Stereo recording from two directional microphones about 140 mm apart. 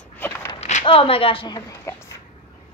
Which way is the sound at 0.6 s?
55° left (ahead or behind).